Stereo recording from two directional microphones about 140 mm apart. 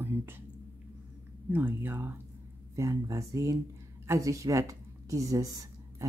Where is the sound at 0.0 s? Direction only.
15° right (ahead or behind).